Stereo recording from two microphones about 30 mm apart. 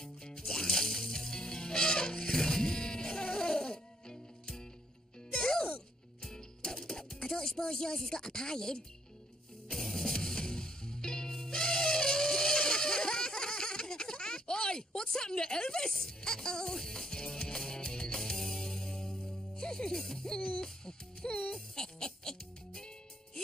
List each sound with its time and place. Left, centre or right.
0.0 s music: left
7.2 s a woman's voice: centre
9.7 s music: centre
10.1 s music: left
15.0 s a woman's voice: left
15.9 s music: left
20.3 s hoot: left
20.6 s music: left